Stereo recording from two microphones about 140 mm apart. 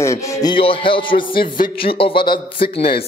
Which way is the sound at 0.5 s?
40° left (ahead or behind).